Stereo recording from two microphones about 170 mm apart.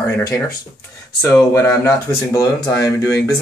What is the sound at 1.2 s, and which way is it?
Speech, 15° left (ahead or behind).